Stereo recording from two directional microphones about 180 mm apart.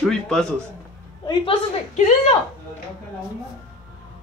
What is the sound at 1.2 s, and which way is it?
Speech, 25° left (ahead or behind).